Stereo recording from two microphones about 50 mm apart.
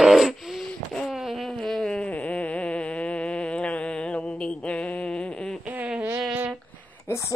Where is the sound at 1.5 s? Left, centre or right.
Centre.